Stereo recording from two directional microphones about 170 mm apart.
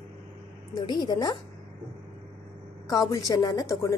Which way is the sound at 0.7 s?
25° left (ahead or behind).